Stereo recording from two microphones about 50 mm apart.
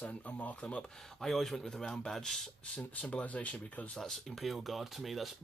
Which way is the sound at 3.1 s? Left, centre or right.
Left.